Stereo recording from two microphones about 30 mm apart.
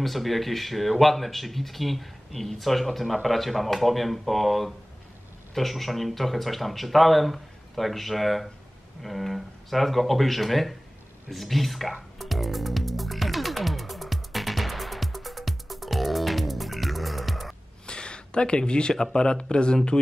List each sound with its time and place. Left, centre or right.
0.0 s speech: centre
11.2 s music: centre
17.8 s a sound: left
19.1 s speech: left